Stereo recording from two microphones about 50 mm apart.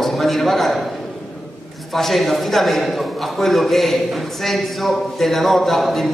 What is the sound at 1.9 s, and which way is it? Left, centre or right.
A man's voice, centre.